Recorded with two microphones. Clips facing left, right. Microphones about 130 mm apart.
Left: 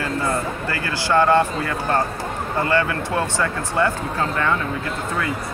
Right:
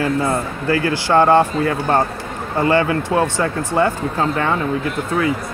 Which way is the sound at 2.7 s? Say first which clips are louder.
Right 6 dB; 25° right (ahead or behind).